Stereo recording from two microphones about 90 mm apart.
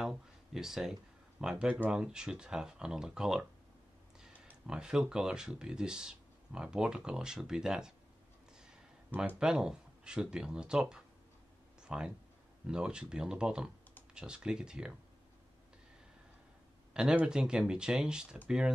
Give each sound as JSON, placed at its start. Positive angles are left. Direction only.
{"t": 0.0, "sound": "speech", "side_deg": -5}
{"t": 4.6, "sound": "speech", "side_deg": -10}
{"t": 8.6, "sound": "a sound", "side_deg": -15}
{"t": 9.4, "sound": "speech", "side_deg": -5}
{"t": 11.8, "sound": "a sound", "side_deg": -10}
{"t": 12.6, "sound": "speech", "side_deg": -10}
{"t": 16.9, "sound": "speech", "side_deg": -10}